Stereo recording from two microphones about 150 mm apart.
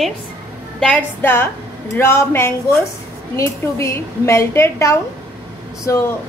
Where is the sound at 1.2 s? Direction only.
15° left (ahead or behind).